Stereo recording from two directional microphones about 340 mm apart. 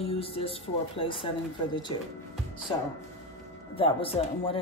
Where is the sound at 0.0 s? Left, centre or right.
Centre.